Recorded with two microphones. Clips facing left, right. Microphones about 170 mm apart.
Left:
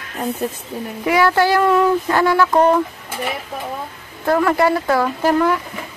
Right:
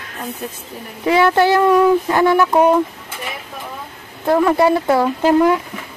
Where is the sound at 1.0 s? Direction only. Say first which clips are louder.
Right 2 dB; 25° right (ahead or behind); by 2.8 s 10° right (ahead or behind).